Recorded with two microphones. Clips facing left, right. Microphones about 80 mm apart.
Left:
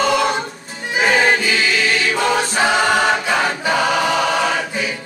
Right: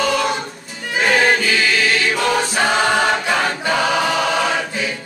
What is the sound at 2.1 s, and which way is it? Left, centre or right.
Choir, centre.